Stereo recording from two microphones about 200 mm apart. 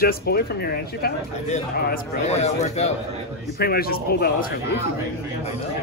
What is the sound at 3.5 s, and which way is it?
A man's voice, 50° left (ahead or behind).